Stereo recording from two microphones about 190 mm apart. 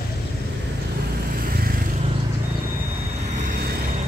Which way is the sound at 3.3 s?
50° right (ahead or behind).